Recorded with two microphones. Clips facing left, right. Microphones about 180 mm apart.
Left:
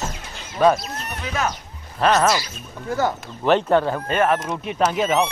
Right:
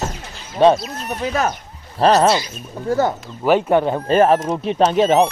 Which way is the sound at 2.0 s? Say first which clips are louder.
Right 4 dB; 35° right (ahead or behind).